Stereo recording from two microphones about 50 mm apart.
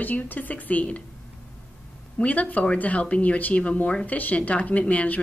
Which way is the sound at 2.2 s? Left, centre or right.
Left.